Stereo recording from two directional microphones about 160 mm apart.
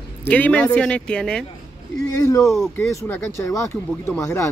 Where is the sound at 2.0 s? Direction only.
20° left (ahead or behind).